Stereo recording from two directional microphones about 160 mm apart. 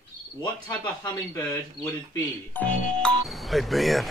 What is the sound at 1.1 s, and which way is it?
Speech, 20° left (ahead or behind).